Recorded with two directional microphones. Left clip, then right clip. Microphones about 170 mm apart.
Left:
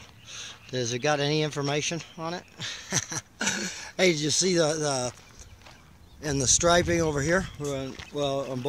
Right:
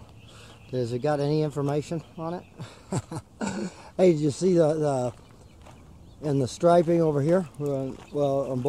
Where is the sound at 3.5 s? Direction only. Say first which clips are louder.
Left 3 dB; centre (ahead or behind).